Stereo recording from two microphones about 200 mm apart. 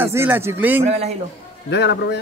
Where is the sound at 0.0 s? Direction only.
10° right (ahead or behind).